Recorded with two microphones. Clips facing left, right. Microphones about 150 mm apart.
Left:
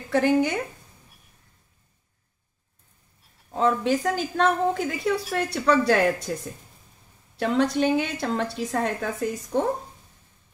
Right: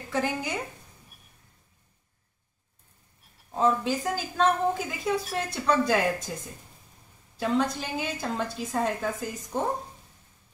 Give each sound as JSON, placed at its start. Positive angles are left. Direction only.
{"t": 0.1, "sound": "speech", "side_deg": 65}
{"t": 3.5, "sound": "a woman's voice", "side_deg": 70}
{"t": 7.3, "sound": "a woman's voice", "side_deg": 70}